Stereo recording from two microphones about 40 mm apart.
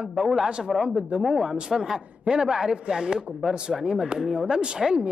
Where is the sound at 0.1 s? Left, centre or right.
Centre.